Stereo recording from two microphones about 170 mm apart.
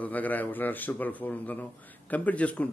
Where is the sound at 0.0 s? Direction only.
10° left (ahead or behind).